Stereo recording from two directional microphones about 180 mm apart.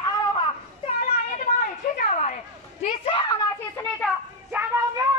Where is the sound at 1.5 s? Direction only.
45° left (ahead or behind); by 3.4 s 25° left (ahead or behind).